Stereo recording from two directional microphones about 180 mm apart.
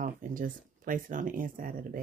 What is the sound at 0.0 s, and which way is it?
Speech, 50° right (ahead or behind).